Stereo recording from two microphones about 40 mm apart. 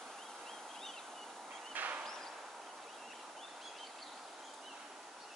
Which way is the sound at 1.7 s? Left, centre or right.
Right.